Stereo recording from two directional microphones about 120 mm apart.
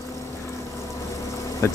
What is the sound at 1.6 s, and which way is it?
Speech, 20° left (ahead or behind).